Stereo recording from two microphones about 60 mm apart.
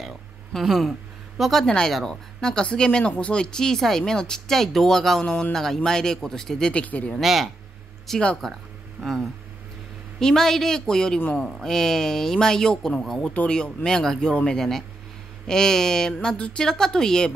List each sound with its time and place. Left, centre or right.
0.7 s speech: centre
1.7 s speech: centre
6.7 s speech: left
7.2 s speech: centre
13.2 s speech: centre